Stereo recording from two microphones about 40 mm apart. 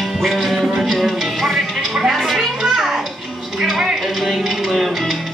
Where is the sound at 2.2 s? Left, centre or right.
Centre.